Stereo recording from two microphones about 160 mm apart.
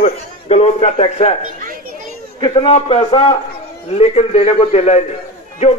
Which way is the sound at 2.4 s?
30° left (ahead or behind).